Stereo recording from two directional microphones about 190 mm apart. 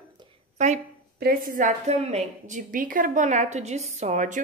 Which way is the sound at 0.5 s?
40° right (ahead or behind).